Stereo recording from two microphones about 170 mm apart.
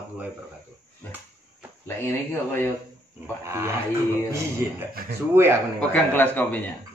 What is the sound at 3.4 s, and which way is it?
Speech, 15° right (ahead or behind).